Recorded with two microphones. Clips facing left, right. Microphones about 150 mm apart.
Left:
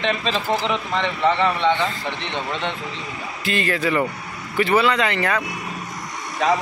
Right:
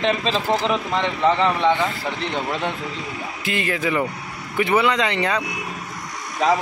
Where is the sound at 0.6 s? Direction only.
5° right (ahead or behind).